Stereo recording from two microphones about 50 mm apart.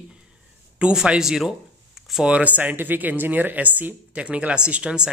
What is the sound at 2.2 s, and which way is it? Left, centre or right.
Speech, right.